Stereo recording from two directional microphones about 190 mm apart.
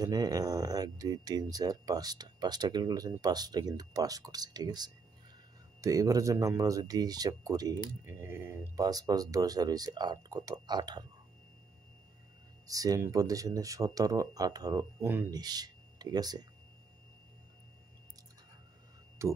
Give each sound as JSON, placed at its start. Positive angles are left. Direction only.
{"t": 0.0, "sound": "speech", "side_deg": -20}
{"t": 12.6, "sound": "speech", "side_deg": -20}
{"t": 19.2, "sound": "speech", "side_deg": -15}